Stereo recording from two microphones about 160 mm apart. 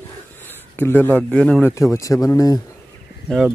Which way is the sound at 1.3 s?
10° left (ahead or behind).